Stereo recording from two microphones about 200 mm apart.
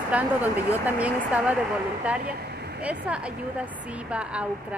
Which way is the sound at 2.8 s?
5° right (ahead or behind).